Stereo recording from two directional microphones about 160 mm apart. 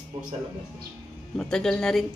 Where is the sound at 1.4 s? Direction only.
5° left (ahead or behind).